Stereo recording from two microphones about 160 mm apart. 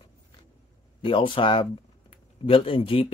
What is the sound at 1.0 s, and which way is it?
Speech, 30° left (ahead or behind).